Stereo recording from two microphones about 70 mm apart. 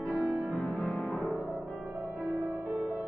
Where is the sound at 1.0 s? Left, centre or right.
Left.